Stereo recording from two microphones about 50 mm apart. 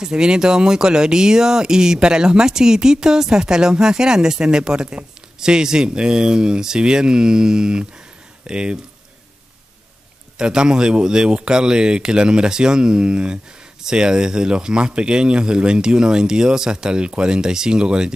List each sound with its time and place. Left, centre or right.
0.0 s speech: centre
10.3 s speech: centre